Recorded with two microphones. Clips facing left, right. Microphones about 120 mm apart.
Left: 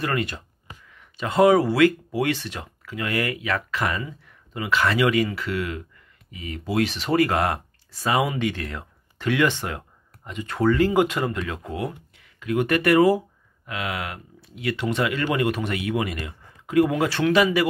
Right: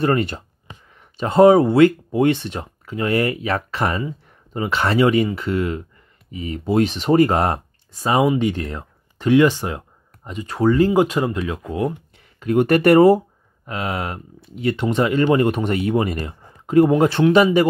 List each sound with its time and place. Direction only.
0.0 s speech: 30° right (ahead or behind)
8.0 s speech: 20° right (ahead or behind)
9.5 s a sound: 20° right (ahead or behind)
10.5 s speech: 20° right (ahead or behind)
11.7 s speech: 35° right (ahead or behind)